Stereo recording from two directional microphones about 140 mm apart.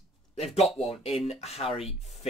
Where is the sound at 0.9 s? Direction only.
45° left (ahead or behind).